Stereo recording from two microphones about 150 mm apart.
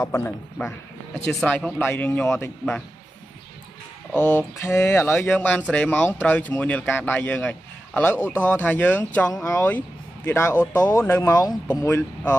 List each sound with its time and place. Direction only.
0.0 s a man's voice: 15° left (ahead or behind)
4.3 s a man's voice: 15° left (ahead or behind)